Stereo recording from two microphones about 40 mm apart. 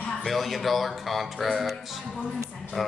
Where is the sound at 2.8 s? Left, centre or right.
Centre.